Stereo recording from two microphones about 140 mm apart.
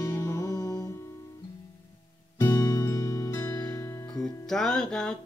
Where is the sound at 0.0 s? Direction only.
25° left (ahead or behind).